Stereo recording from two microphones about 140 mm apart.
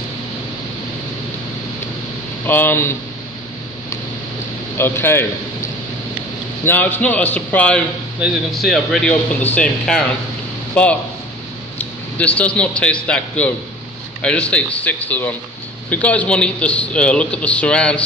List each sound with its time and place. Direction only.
2.4 s a man's voice: 15° left (ahead or behind)
4.7 s a man's voice: 15° left (ahead or behind)
6.6 s a man's voice: 15° left (ahead or behind)
12.4 s a man's voice: 10° left (ahead or behind)